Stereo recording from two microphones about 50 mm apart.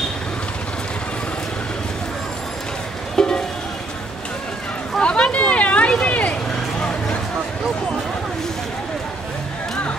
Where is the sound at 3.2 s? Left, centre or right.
Centre.